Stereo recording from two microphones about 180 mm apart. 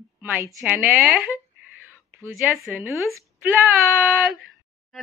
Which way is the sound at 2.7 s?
10° right (ahead or behind).